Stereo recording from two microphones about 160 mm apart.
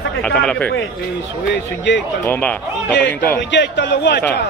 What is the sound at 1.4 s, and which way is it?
Speech, 90° left.